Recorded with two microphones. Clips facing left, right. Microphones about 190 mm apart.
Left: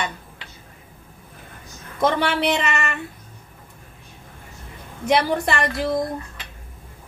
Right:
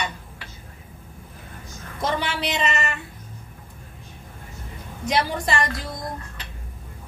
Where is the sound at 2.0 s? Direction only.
60° left (ahead or behind).